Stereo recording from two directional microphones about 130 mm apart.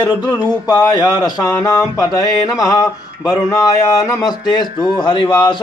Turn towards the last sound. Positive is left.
turn(degrees=35)  # may be behind; listen again after turning